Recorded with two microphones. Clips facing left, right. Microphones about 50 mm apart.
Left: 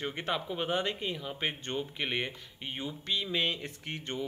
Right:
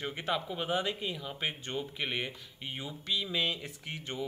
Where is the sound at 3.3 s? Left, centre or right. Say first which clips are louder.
Left 2 dB; left.